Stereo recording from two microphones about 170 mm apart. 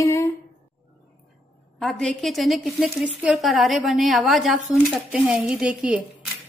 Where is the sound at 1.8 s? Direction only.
Centre (ahead or behind).